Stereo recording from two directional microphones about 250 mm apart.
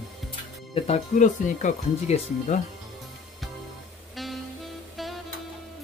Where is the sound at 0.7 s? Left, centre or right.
Left.